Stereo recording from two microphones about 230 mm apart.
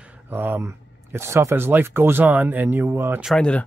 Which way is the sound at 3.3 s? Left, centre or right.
Centre.